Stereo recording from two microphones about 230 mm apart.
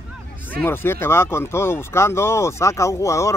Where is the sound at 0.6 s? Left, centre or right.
Centre.